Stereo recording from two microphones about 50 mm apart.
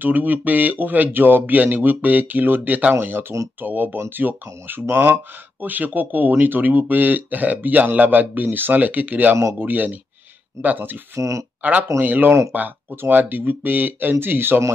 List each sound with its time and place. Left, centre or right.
0.0 s speech: right
11.1 s speech: right
11.6 s speech: right